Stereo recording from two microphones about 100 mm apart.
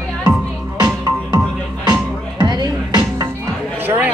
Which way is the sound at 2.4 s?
45° right (ahead or behind).